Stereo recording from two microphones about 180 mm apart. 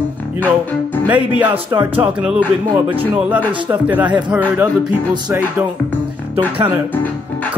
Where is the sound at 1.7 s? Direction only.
25° right (ahead or behind).